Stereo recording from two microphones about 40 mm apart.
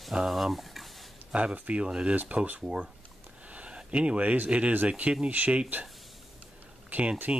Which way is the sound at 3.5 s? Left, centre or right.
Right.